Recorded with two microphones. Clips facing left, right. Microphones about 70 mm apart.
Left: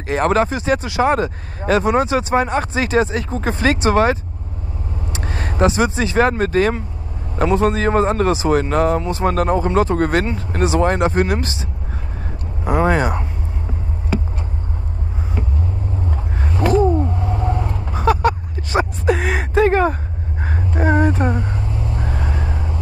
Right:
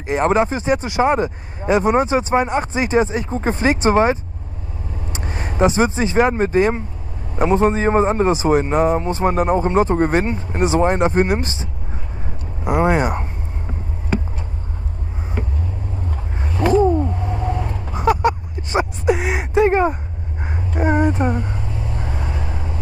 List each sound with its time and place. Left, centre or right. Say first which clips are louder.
0.0 s speech: even; centre
5.7 s speech: right 1 dB; right
12.6 s speech: even; centre
17.4 s vehicle: left 1 dB; left
18.1 s a sound: even; right
20.5 s a sound: left 1 dB; left
20.9 s speech: even; centre
21.4 s vehicle: left 2 dB; left